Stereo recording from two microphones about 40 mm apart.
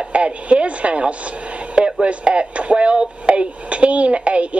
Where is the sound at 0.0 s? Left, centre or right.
Right.